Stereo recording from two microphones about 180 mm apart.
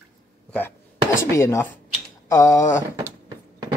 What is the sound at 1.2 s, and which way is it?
Speech, 15° left (ahead or behind).